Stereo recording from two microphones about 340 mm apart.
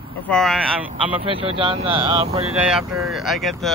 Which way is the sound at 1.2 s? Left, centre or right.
Centre.